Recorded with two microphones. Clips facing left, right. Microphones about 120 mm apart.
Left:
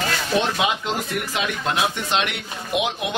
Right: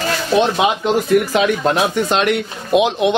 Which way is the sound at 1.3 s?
45° right (ahead or behind).